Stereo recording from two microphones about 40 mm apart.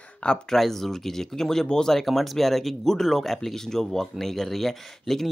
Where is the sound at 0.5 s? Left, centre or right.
Centre.